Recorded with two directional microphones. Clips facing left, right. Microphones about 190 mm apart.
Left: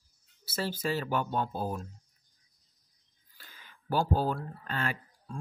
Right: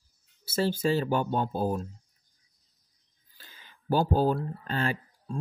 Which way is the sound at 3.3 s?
25° right (ahead or behind).